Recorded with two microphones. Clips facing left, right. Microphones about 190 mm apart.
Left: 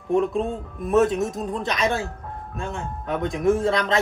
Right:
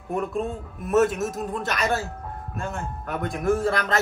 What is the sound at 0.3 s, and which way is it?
Speech, 30° left (ahead or behind).